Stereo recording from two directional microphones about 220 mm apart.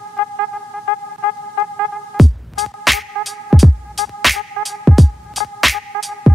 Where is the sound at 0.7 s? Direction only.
5° right (ahead or behind).